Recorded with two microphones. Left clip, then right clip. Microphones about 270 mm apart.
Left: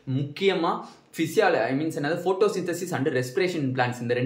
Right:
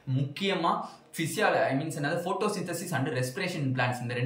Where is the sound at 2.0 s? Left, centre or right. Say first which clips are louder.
Left 6 dB; centre.